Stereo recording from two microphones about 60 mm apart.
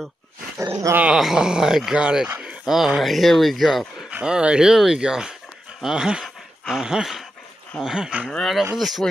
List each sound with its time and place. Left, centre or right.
0.6 s dog: right
1.0 s speech: centre
4.1 s speech: centre
6.2 s dog: centre
7.8 s speech: centre
8.3 s speech: centre